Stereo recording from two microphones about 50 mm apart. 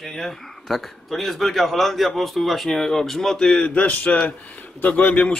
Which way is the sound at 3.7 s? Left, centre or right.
Left.